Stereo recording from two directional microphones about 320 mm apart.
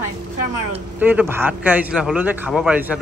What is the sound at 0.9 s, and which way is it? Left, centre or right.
A man's voice, centre.